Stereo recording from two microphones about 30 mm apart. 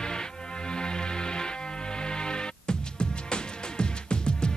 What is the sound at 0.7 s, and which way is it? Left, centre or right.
Music, left.